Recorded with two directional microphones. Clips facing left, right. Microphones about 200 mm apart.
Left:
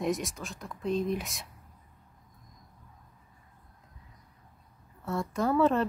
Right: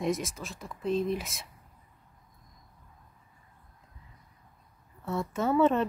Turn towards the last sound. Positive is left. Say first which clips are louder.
# right 1 dB
turn(degrees=0)  # may be behind; listen again after turning